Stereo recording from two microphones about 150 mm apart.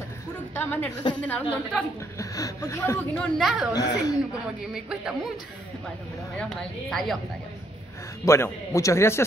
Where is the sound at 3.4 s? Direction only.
Centre (ahead or behind).